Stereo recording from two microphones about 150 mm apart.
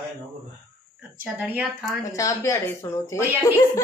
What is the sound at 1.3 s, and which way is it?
Speech, 10° right (ahead or behind).